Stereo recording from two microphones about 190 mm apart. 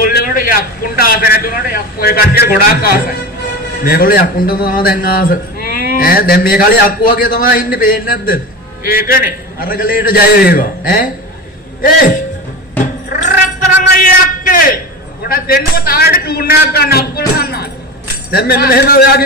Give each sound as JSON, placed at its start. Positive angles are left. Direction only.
{"t": 0.0, "sound": "a man's voice", "side_deg": 50}
{"t": 12.8, "sound": "a sound", "side_deg": 45}
{"t": 15.2, "sound": "a man's voice", "side_deg": 50}